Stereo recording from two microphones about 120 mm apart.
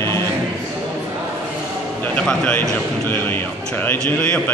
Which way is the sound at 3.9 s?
15° left (ahead or behind).